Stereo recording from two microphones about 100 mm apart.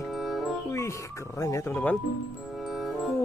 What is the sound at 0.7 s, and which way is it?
Speech, 30° left (ahead or behind).